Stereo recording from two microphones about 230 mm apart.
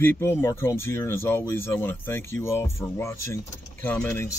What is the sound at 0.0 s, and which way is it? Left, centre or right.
Speech, centre.